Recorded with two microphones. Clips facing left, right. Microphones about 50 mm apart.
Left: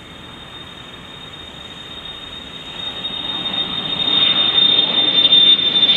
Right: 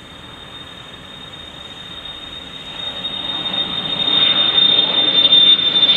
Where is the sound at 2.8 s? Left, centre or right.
Centre.